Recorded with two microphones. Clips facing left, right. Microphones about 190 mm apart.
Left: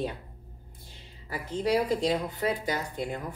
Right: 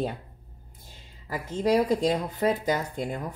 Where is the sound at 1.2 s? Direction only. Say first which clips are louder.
Right 3 dB; 45° right (ahead or behind).